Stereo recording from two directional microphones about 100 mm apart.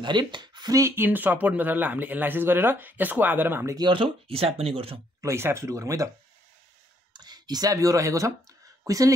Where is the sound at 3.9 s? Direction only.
70° right (ahead or behind).